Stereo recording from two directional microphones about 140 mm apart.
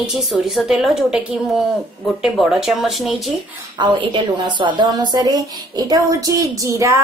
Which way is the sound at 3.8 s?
35° right (ahead or behind).